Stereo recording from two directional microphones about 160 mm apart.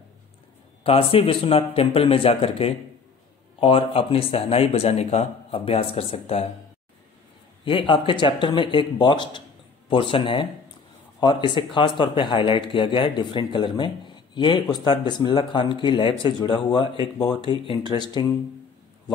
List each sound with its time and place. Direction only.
0.8 s speech: 35° left (ahead or behind)
7.6 s speech: 30° left (ahead or behind)